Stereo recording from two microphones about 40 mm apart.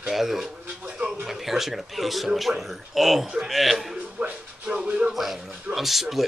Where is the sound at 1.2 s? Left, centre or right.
Centre.